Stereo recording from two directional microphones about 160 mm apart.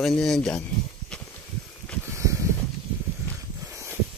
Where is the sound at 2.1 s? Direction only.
20° right (ahead or behind).